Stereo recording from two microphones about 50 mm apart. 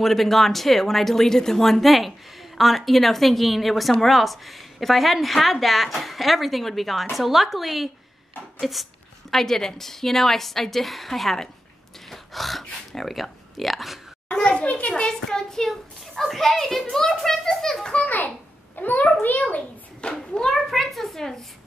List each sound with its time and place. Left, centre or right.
0.0 s a woman's voice: centre
9.3 s a woman's voice: centre
14.3 s a woman's voice: left
17.9 s a child's voice: left
20.2 s a woman's voice: centre